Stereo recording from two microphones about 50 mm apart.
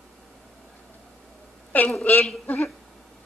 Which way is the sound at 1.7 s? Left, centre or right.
Left.